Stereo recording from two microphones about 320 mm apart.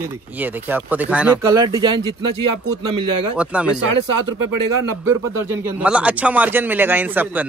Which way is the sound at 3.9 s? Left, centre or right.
Right.